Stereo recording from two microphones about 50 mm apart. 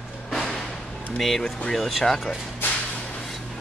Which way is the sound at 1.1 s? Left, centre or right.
Centre.